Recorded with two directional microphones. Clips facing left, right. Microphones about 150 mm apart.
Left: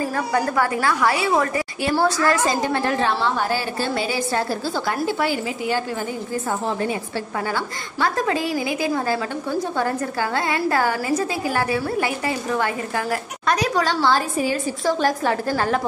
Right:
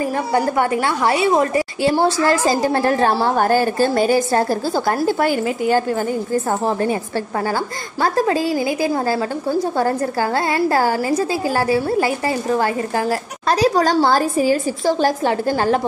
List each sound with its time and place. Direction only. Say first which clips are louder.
0.3 s a woman's voice: right 4 dB; 25° right (ahead or behind); by 5.8 s 45° right (ahead or behind)
8.0 s a woman's voice: right 4 dB; 35° right (ahead or behind)